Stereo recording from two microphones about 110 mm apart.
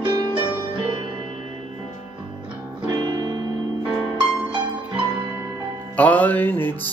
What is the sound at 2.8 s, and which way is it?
Music, 35° right (ahead or behind).